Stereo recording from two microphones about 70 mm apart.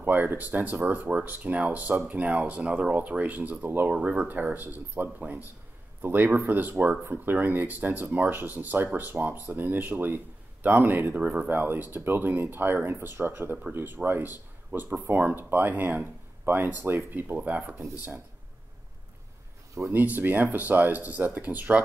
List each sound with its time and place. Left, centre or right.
0.0 s speech: right
3.9 s speech: centre
17.4 s speech: right
19.9 s speech: right